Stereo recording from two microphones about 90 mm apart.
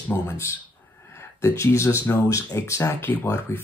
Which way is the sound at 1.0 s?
30° left (ahead or behind).